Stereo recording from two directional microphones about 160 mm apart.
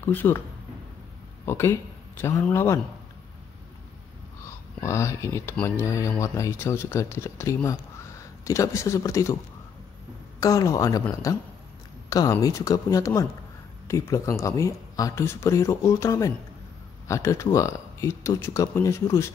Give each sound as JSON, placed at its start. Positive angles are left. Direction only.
{"t": 0.0, "sound": "speech", "side_deg": 15}
{"t": 1.4, "sound": "speech", "side_deg": 15}
{"t": 4.5, "sound": "speech", "side_deg": 15}
{"t": 10.4, "sound": "speech", "side_deg": 20}